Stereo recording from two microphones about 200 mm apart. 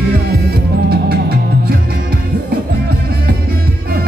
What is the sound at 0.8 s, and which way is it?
Music, 50° right (ahead or behind).